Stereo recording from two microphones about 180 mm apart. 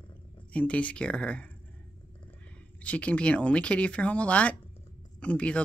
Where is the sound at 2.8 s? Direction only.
5° left (ahead or behind).